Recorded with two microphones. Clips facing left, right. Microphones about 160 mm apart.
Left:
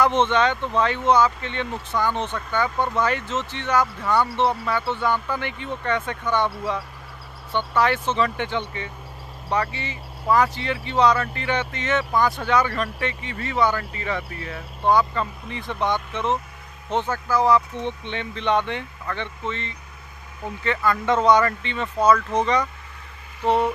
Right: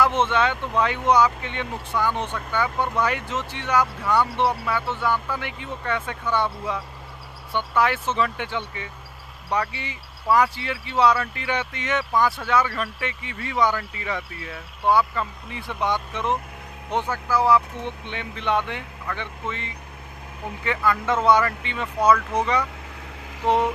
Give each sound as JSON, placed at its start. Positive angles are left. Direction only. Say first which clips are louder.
{"t": 0.0, "sound": "speech", "louder": "left 2 dB", "side_deg": -10}
{"t": 7.5, "sound": "speech", "louder": "left 1 dB", "side_deg": -10}